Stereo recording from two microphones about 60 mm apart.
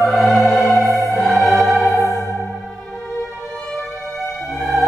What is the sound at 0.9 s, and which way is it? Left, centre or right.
Music, right.